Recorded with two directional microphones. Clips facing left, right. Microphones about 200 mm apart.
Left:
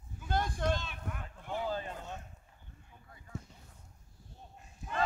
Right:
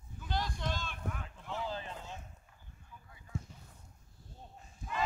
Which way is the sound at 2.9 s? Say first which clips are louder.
Right 6 dB; 25° left (ahead or behind).